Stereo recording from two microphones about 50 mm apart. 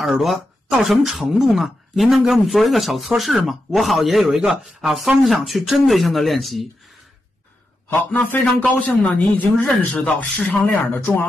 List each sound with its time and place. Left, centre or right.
0.0 s speech: centre
8.3 s speech: left
10.0 s speech: centre
10.5 s speech: left